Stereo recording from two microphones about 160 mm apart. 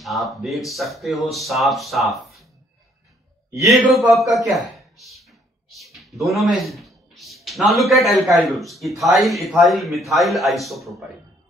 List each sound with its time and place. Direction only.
0.0 s speech: centre (ahead or behind)
3.5 s a man's voice: 20° right (ahead or behind)
4.3 s speech: centre (ahead or behind)